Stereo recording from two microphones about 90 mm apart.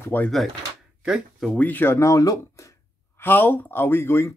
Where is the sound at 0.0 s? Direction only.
25° left (ahead or behind).